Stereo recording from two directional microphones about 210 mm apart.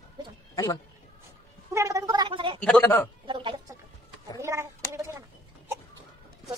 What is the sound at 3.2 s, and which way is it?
Chicken, 25° right (ahead or behind).